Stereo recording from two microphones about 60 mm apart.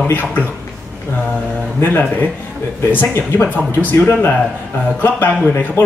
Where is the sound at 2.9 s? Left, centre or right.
Left.